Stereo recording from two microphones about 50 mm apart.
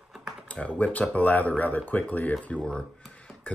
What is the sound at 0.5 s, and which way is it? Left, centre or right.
Speech, left.